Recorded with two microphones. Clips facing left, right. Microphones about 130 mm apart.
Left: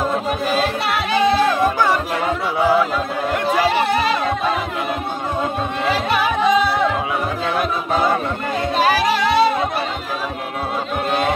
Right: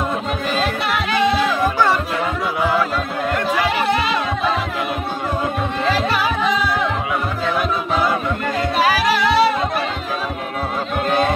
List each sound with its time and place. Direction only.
3.6 s chatter: 35° left (ahead or behind)
6.0 s music: 20° left (ahead or behind)
8.8 s music: 25° left (ahead or behind)